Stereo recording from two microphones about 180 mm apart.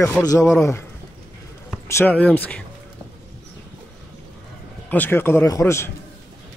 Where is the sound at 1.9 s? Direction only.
15° left (ahead or behind).